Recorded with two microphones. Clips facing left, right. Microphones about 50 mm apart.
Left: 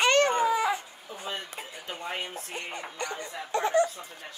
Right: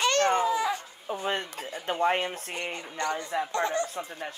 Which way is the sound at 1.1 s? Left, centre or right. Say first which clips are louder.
Right 7 dB; right.